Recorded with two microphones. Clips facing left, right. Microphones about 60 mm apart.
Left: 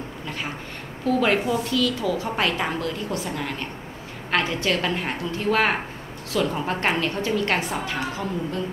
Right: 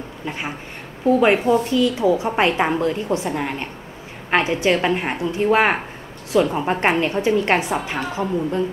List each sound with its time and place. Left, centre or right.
1.0 s a woman's voice: right